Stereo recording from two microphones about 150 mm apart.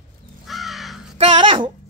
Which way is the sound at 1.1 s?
35° right (ahead or behind).